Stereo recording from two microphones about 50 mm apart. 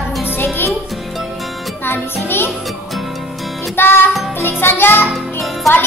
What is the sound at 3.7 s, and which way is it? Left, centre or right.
Music, left.